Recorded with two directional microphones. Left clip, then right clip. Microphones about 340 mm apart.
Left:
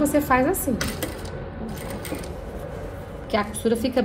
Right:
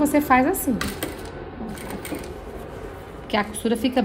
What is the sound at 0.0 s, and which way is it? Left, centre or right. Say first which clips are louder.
Speech: right 2 dB; right.